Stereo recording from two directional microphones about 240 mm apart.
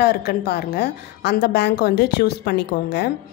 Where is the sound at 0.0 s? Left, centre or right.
Left.